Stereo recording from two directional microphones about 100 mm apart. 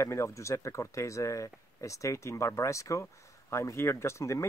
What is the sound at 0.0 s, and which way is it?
Speech, 30° left (ahead or behind).